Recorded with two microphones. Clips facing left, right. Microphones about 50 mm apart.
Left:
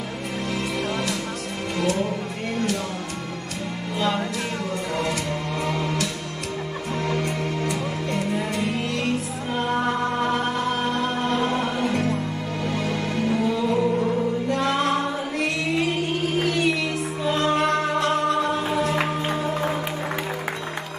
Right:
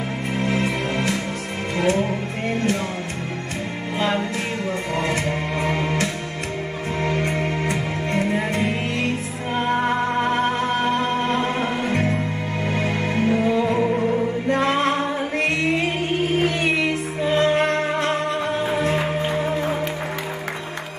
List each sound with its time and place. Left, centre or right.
0.4 s music: right
4.9 s music: right
16.3 s music: right